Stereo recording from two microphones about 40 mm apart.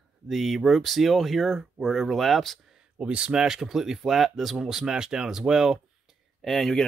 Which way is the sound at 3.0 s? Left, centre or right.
Right.